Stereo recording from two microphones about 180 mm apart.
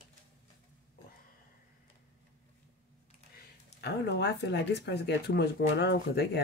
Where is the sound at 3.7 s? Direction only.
70° left (ahead or behind).